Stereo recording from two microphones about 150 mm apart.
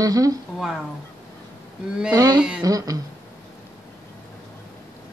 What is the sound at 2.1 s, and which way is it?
Speech, 25° right (ahead or behind).